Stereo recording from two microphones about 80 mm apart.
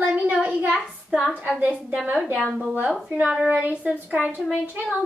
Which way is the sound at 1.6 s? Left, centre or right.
Centre.